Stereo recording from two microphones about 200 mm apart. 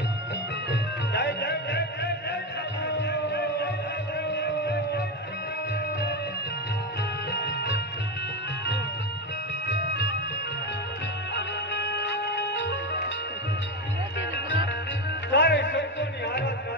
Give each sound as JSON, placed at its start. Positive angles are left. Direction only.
{"t": 0.7, "sound": "music", "side_deg": 60}
{"t": 7.3, "sound": "music", "side_deg": 60}
{"t": 9.7, "sound": "music", "side_deg": 60}
{"t": 11.3, "sound": "music", "side_deg": 60}
{"t": 15.3, "sound": "a sound", "side_deg": 65}